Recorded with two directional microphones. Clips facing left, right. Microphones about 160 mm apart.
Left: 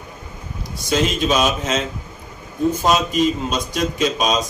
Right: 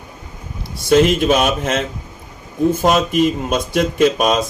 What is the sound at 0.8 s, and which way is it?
A man's voice, 60° right (ahead or behind).